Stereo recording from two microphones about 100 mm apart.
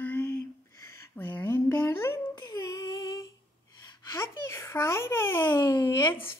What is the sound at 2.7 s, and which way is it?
Humming, 30° left (ahead or behind).